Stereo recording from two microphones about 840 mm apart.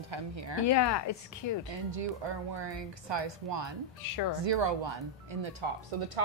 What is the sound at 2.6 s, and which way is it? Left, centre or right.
A woman's voice, right.